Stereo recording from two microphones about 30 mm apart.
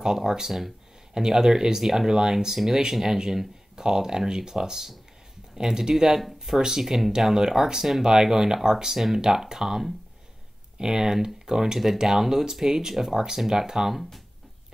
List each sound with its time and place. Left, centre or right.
0.0 s speech: centre
12.9 s speech: centre